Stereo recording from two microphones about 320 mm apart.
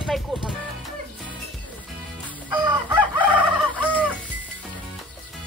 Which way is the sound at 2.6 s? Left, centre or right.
Centre.